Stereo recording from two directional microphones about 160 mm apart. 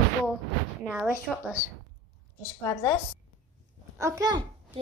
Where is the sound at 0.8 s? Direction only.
5° right (ahead or behind).